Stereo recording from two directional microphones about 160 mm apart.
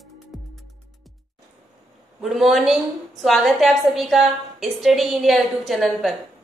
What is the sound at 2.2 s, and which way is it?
A woman's voice, centre (ahead or behind).